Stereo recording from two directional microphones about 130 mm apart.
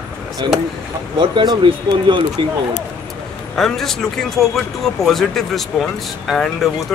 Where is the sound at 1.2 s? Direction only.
35° right (ahead or behind).